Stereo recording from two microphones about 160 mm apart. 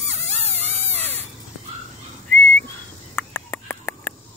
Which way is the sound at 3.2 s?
15° left (ahead or behind).